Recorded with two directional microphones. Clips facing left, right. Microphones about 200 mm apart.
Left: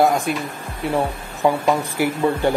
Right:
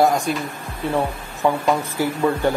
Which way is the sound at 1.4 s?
10° left (ahead or behind).